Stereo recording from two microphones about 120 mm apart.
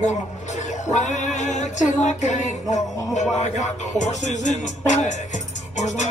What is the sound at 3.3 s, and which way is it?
Speech, 80° left.